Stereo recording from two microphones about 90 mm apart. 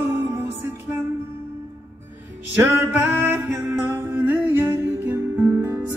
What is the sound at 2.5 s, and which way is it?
Music, 25° right (ahead or behind).